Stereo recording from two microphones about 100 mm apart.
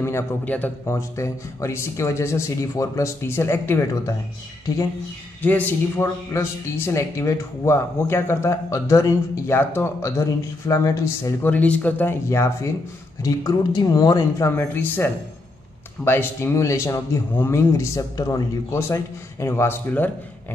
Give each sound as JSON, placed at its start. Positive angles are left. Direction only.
{"t": 0.8, "sound": "speech", "side_deg": 30}
{"t": 5.4, "sound": "speech", "side_deg": 15}
{"t": 6.3, "sound": "speech", "side_deg": 30}
{"t": 11.5, "sound": "speech", "side_deg": 15}
{"t": 12.3, "sound": "speech", "side_deg": 30}
{"t": 13.2, "sound": "speech", "side_deg": 40}
{"t": 14.5, "sound": "speech", "side_deg": 20}